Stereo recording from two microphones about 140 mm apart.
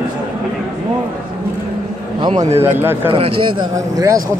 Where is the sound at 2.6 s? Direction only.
15° right (ahead or behind).